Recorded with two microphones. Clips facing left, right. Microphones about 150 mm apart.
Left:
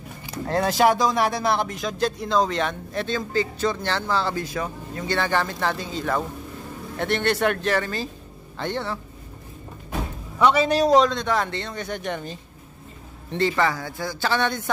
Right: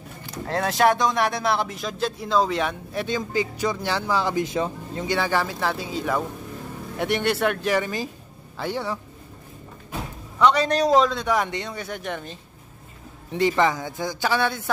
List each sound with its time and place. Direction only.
0.2 s speech: 5° left (ahead or behind); by 5.1 s 25° right (ahead or behind)
5.1 s a man's voice: 5° right (ahead or behind)
10.4 s speech: 5° left (ahead or behind)
13.3 s a man's voice: 15° right (ahead or behind)